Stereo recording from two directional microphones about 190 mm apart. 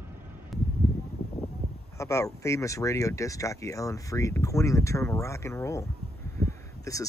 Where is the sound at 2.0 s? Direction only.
15° left (ahead or behind).